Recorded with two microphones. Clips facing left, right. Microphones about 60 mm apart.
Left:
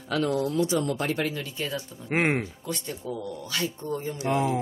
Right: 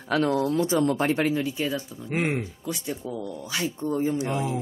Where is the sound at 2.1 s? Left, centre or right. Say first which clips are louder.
Left 2 dB; left.